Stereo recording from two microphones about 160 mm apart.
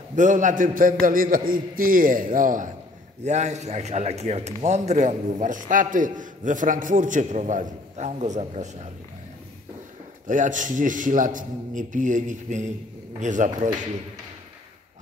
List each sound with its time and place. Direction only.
0.1 s a man's voice: 50° right (ahead or behind)
10.2 s a man's voice: 55° right (ahead or behind)